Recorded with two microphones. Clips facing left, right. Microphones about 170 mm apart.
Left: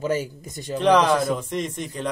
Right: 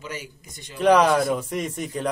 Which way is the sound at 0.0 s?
45° left (ahead or behind).